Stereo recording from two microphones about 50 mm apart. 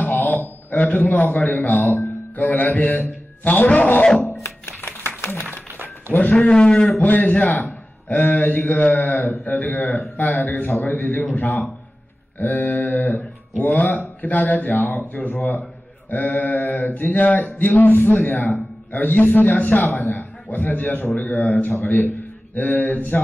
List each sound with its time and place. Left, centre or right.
0.2 s a man's voice: left
2.3 s mantra: left
5.0 s a sound: left
6.3 s a man's voice: left
6.9 s mantra: left
14.7 s speech: left
16.1 s mantra: left
21.7 s a man's voice: left